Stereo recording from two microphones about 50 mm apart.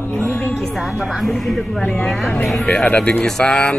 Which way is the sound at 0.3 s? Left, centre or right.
Left.